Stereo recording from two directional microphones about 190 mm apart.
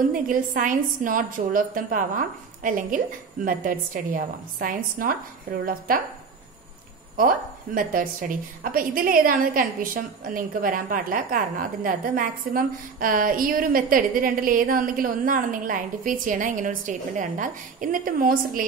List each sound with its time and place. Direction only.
0.1 s a woman's voice: 45° right (ahead or behind)
7.2 s a woman's voice: 45° right (ahead or behind)